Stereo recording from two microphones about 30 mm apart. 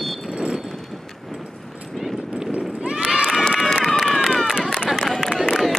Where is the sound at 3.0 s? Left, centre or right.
Right.